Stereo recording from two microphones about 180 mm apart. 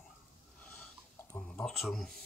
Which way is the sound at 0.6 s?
5° left (ahead or behind).